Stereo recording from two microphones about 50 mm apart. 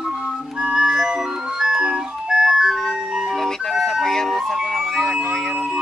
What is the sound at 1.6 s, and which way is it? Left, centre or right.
Ice cream truck, centre.